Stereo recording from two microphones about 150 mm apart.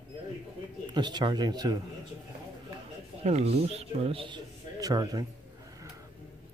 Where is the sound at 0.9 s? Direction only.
30° right (ahead or behind).